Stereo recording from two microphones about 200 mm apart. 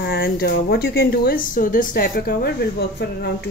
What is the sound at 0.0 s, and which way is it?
A woman's voice, 50° left (ahead or behind).